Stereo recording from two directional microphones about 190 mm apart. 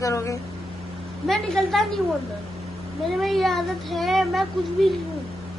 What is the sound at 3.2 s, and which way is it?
Speech, centre (ahead or behind).